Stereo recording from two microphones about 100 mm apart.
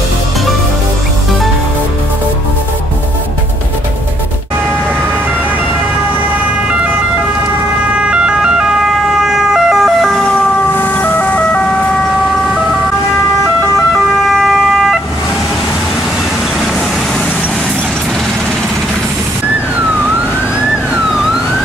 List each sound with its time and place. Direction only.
8.0 s emergency vehicle: 10° right (ahead or behind)
9.2 s ambulance: 5° right (ahead or behind)
11.0 s emergency vehicle: 15° left (ahead or behind)